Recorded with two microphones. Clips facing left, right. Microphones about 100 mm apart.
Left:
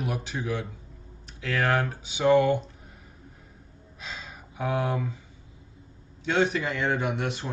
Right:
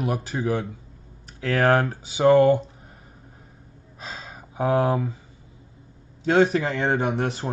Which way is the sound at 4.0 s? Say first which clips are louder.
Right 3 dB; 40° right (ahead or behind).